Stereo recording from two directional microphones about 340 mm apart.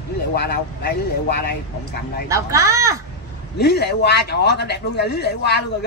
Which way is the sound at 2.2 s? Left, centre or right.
Centre.